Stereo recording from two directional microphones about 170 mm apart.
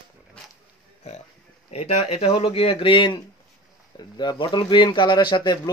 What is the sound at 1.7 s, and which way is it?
Speech, 40° left (ahead or behind).